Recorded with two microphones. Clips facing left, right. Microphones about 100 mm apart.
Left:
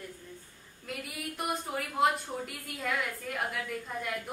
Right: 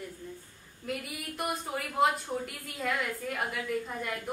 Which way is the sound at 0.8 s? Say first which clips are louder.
Right 2 dB; centre (ahead or behind).